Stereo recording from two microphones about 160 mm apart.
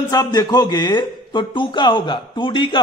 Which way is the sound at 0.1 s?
25° left (ahead or behind).